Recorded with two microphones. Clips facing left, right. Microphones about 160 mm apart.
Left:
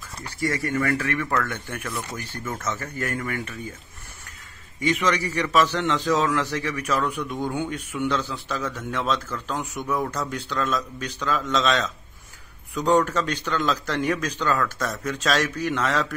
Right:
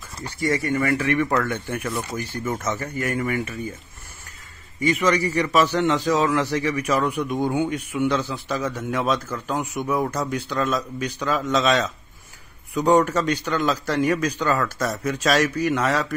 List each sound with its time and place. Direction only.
0.4 s a man's voice: 20° right (ahead or behind)
4.7 s a man's voice: 10° right (ahead or behind)